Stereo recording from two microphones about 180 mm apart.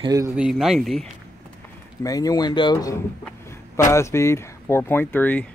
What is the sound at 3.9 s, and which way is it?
Speech, 15° left (ahead or behind).